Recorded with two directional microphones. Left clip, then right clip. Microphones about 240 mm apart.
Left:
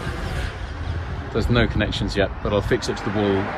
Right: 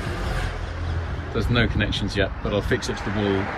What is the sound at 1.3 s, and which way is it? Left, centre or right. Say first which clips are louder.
Speech: left 2 dB; centre.